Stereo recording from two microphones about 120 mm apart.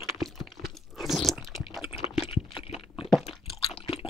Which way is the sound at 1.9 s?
55° left (ahead or behind).